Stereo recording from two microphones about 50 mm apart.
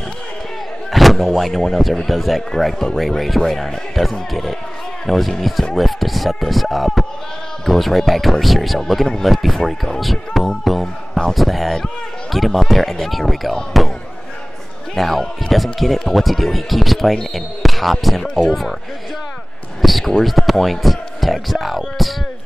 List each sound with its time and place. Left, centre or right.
1.1 s speech: centre
15.0 s speech: centre
19.8 s speech: centre